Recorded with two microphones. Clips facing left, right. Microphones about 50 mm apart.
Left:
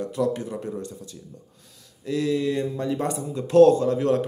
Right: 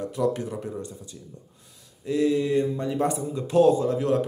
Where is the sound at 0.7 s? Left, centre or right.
Left.